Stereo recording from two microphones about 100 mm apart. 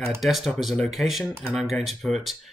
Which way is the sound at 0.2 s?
Centre (ahead or behind).